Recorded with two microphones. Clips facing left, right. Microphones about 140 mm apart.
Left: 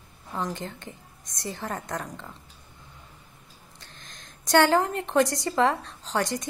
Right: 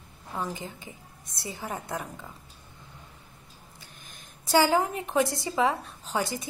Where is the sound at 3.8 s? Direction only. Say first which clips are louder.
Left 3 dB; 10° right (ahead or behind).